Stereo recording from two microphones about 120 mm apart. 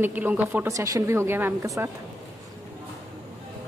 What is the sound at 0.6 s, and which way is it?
A woman's voice, 30° right (ahead or behind).